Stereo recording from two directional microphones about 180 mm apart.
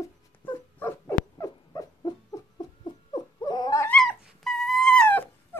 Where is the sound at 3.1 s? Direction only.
25° left (ahead or behind).